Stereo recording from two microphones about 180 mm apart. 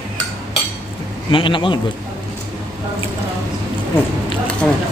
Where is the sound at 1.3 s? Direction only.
25° left (ahead or behind).